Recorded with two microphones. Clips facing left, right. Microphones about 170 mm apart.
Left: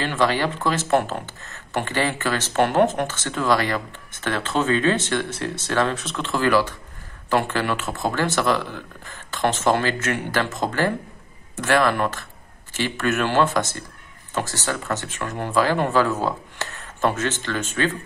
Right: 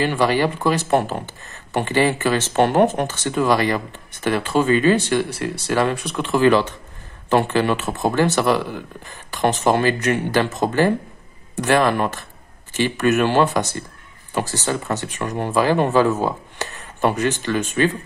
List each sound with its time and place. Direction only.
0.0 s speech: 15° right (ahead or behind)